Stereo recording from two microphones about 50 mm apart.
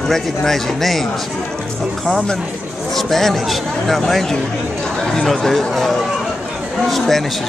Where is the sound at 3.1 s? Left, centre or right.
Centre.